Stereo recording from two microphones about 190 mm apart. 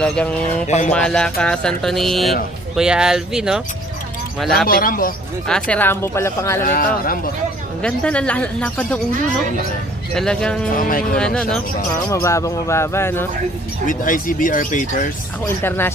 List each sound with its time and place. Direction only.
0.0 s speech: 5° left (ahead or behind)
0.7 s speech: 35° left (ahead or behind)
0.9 s speech: 5° left (ahead or behind)
4.6 s speech: 50° left (ahead or behind)
5.5 s speech: 10° left (ahead or behind)
6.6 s speech: 50° left (ahead or behind)
7.8 s speech: 5° left (ahead or behind)
10.1 s speech: 5° left (ahead or behind)
10.8 s speech: 45° left (ahead or behind)
11.1 s speech: 5° left (ahead or behind)
12.1 s speech: 15° left (ahead or behind)
13.8 s speech: 45° left (ahead or behind)
15.4 s speech: 10° left (ahead or behind)